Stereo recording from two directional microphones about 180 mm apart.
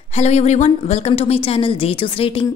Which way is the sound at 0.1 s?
40° left (ahead or behind).